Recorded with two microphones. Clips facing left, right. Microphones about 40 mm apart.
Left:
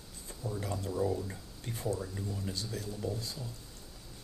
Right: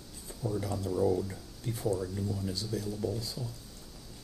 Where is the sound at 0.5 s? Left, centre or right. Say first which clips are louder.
Right 2 dB; left.